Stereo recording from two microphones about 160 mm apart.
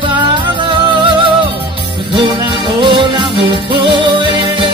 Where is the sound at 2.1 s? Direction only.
30° right (ahead or behind).